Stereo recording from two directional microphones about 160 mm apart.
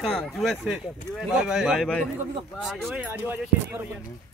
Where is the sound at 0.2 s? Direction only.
Centre (ahead or behind).